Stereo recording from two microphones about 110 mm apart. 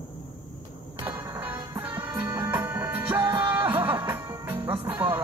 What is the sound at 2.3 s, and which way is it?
Music, 20° right (ahead or behind).